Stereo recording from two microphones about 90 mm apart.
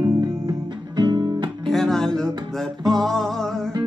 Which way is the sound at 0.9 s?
55° right (ahead or behind).